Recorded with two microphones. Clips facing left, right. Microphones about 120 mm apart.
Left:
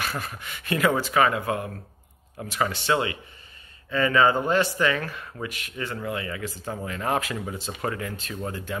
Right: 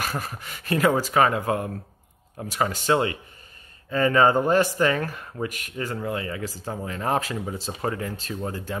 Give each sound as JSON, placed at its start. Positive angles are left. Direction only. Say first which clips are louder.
{"t": 0.0, "sound": "speech", "louder": "right 1 dB", "side_deg": -40}